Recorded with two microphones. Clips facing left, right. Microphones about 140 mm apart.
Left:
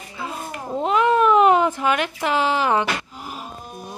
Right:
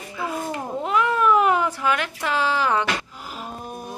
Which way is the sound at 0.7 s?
25° left (ahead or behind).